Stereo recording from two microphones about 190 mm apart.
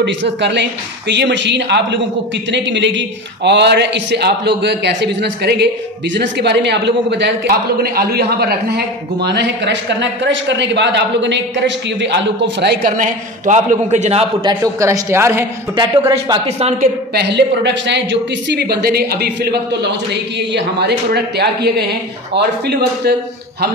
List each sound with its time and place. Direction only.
0.0 s a woman's voice: 65° right (ahead or behind)
12.9 s a man's voice: 40° right (ahead or behind)
14.4 s a man's voice: 20° right (ahead or behind)
16.4 s a man's voice: 35° right (ahead or behind)
17.1 s a man's voice: 60° right (ahead or behind)